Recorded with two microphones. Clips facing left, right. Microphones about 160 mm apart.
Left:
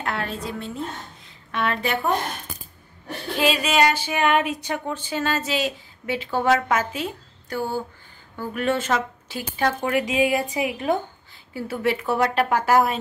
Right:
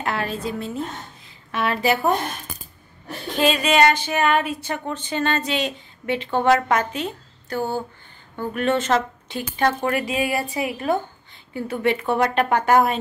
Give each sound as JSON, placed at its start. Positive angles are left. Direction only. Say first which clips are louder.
{"t": 0.0, "sound": "a woman's voice", "louder": "right 3 dB", "side_deg": 0}
{"t": 3.3, "sound": "speech", "louder": "right 2 dB", "side_deg": 5}
{"t": 11.5, "sound": "a woman's voice", "louder": "right 2 dB", "side_deg": 5}